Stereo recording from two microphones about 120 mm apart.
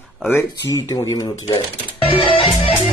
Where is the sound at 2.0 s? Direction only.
50° left (ahead or behind).